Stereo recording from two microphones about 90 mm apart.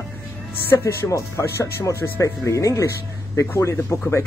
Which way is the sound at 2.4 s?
35° left (ahead or behind).